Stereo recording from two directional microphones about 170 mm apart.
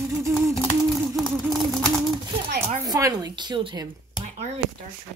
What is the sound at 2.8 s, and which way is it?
A woman's voice, 20° right (ahead or behind).